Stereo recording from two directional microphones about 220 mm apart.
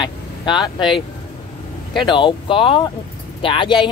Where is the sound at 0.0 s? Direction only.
20° left (ahead or behind).